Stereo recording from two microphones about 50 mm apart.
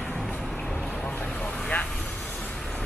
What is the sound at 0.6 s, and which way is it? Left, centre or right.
Vehicle, left.